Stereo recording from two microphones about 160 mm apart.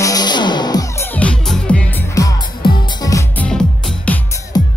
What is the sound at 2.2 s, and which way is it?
Music, 20° left (ahead or behind).